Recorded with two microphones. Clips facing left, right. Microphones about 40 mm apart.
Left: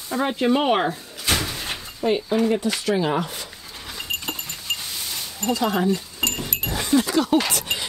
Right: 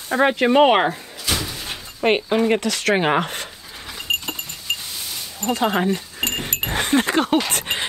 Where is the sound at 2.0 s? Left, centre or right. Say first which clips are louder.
Right 3 dB; right.